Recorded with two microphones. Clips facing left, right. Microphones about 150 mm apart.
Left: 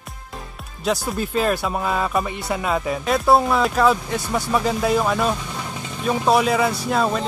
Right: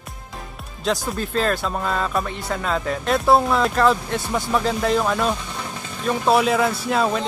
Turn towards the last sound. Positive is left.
turn(degrees=0)  # may be behind; listen again after turning